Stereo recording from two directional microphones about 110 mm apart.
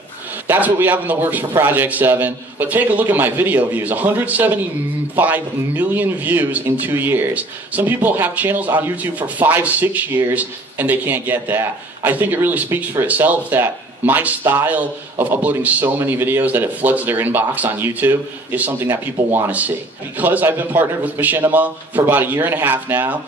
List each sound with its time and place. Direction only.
0.5 s a man's voice: 15° right (ahead or behind)